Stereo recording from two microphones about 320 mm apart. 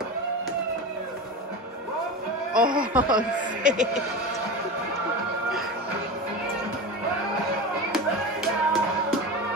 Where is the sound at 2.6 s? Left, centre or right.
Right.